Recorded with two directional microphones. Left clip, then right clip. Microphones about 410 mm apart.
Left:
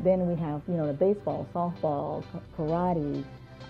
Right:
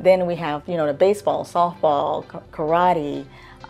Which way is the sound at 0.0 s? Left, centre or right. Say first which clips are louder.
Right 9 dB; centre.